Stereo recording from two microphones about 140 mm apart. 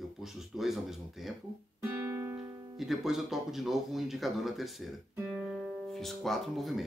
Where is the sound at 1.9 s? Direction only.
20° right (ahead or behind).